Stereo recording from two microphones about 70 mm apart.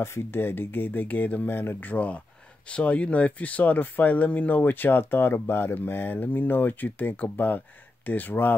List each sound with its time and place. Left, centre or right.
0.0 s speech: left